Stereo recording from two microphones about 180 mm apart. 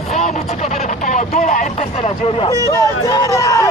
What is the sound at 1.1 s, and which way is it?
Speech, 45° left (ahead or behind).